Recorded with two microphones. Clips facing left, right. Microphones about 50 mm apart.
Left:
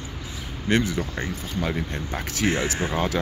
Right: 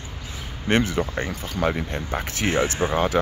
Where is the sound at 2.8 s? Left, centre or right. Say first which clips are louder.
Right 3 dB; right.